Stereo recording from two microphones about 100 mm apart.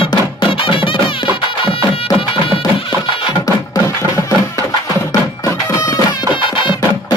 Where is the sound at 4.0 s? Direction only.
30° left (ahead or behind).